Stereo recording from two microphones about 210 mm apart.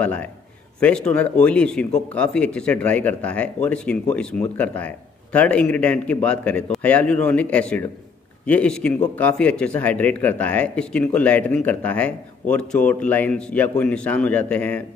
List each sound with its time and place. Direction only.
0.0 s speech: 5° left (ahead or behind)
1.9 s speech: 35° left (ahead or behind)
2.1 s speech: 5° left (ahead or behind)